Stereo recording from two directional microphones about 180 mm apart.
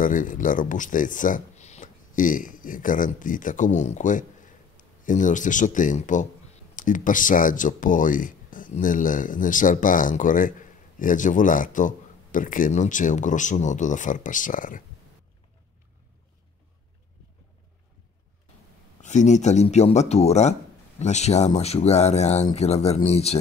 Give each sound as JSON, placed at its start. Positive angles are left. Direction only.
{"t": 0.0, "sound": "speech", "side_deg": 45}
{"t": 19.0, "sound": "speech", "side_deg": 40}